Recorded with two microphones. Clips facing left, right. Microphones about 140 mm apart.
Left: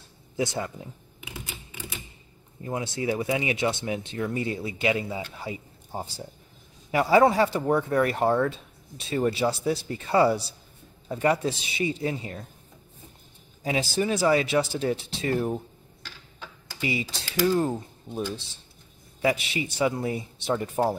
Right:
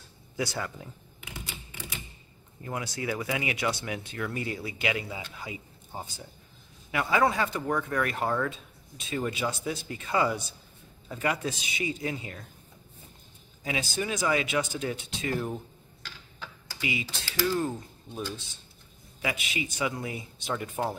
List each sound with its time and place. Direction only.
0.4 s speech: 20° left (ahead or behind)
2.6 s speech: 25° left (ahead or behind)
13.7 s speech: 30° left (ahead or behind)
17.4 s speech: 30° left (ahead or behind)